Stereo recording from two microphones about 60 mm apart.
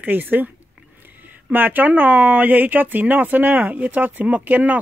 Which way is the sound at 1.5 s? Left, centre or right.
Right.